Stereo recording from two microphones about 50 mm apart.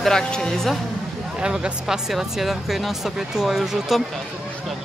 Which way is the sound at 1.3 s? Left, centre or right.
Centre.